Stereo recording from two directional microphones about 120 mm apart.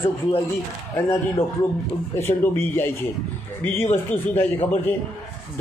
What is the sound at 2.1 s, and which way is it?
Speech, 20° left (ahead or behind).